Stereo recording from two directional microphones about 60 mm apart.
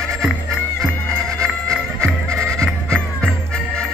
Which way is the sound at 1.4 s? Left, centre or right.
Centre.